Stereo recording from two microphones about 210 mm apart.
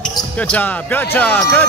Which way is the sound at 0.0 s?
5° left (ahead or behind).